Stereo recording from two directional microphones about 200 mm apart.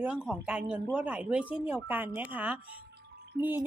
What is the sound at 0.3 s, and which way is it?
Speech, 5° right (ahead or behind).